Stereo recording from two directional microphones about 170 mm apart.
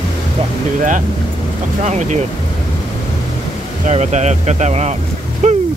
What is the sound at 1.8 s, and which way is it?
Speech, 45° right (ahead or behind).